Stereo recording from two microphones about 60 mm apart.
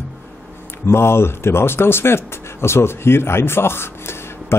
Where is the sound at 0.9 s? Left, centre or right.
Left.